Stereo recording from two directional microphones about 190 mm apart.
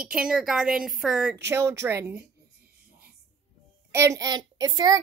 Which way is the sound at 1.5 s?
15° right (ahead or behind).